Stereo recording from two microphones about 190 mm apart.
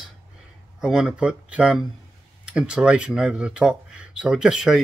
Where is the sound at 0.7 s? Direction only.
5° right (ahead or behind).